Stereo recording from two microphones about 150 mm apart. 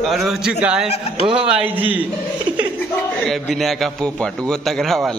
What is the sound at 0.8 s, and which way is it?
Speech, 45° left (ahead or behind).